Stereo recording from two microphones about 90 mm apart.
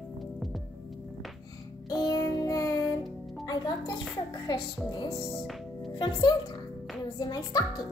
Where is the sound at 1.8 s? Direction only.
45° left (ahead or behind).